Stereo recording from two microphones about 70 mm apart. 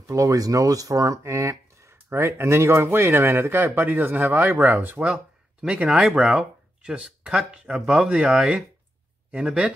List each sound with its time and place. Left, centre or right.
0.0 s speech: right; by 8.6 s centre